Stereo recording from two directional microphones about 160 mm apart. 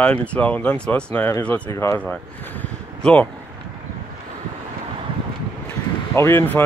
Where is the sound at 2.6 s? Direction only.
10° left (ahead or behind).